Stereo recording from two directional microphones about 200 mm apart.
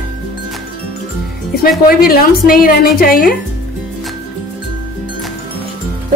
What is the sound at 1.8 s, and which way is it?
Speech, 45° left (ahead or behind).